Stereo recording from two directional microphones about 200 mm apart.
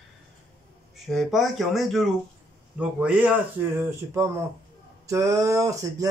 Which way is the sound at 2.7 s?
5° right (ahead or behind).